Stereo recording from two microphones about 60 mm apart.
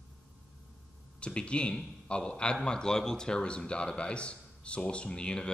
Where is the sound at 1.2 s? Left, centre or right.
Centre.